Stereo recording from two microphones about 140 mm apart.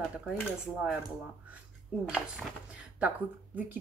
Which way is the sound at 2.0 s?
5° right (ahead or behind).